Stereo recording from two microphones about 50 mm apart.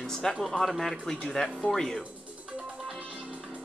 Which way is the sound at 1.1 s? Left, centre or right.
Centre.